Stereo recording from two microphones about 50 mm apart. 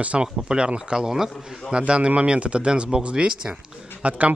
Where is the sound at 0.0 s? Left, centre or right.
Right.